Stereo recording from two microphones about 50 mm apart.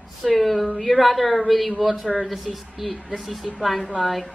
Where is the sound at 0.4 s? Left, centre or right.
Centre.